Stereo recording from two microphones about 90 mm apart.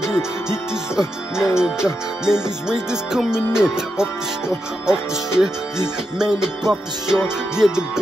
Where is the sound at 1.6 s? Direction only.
5° right (ahead or behind).